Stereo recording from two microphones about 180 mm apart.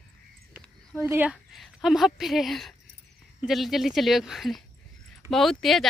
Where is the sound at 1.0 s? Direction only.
10° right (ahead or behind).